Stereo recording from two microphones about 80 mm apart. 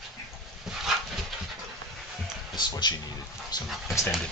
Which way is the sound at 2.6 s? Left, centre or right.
Left.